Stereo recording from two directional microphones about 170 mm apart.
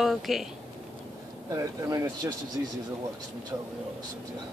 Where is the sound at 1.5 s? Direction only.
20° right (ahead or behind).